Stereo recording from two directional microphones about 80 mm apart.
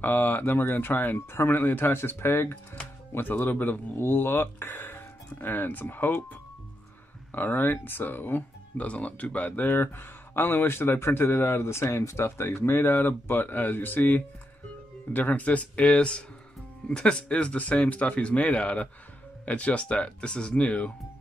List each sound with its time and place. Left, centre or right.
0.0 s speech: left
7.3 s speech: left